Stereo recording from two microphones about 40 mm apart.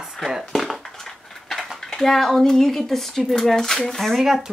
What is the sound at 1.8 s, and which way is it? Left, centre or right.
A woman's voice, centre.